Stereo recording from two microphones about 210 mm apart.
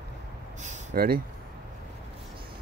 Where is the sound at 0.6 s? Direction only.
40° right (ahead or behind).